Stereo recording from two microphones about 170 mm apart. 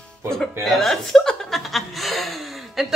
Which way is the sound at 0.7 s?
Centre (ahead or behind).